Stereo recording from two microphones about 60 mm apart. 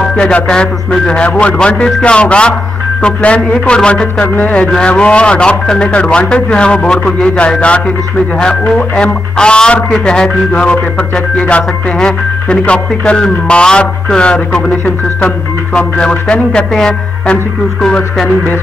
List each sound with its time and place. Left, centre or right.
0.2 s speech: centre
11.3 s speech: centre